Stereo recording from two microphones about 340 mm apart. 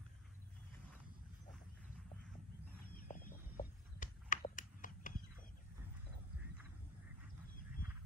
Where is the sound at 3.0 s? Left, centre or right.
Left.